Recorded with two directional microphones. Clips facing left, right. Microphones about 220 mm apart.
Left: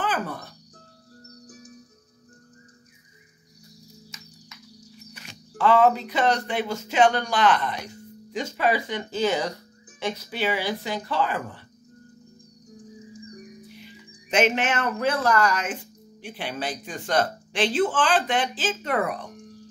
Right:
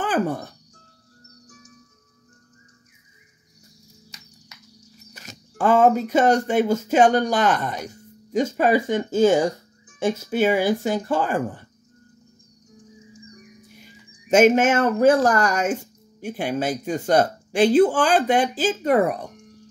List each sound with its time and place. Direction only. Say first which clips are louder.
0.0 s music: right 6 dB; 45° right (ahead or behind)
5.1 s music: right 6 dB; 40° right (ahead or behind)
5.6 s speech: right 2 dB; 45° right (ahead or behind)
13.1 s music: left 4 dB; 35° left (ahead or behind)
13.7 s speech: left 3 dB; 45° right (ahead or behind)